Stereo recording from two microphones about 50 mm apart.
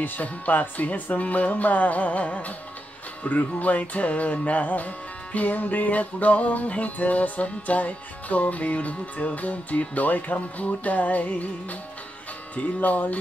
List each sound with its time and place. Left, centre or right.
0.0 s music: left
12.5 s music: left